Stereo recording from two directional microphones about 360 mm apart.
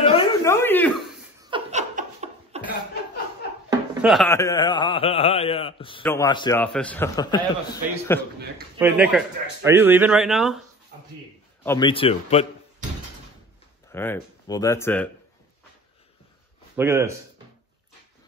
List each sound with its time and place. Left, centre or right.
0.0 s a sound: centre
1.4 s laughter: centre
4.0 s a man's voice: centre
8.7 s speech: centre
11.6 s a man's voice: centre
13.9 s speech: centre
16.7 s speech: centre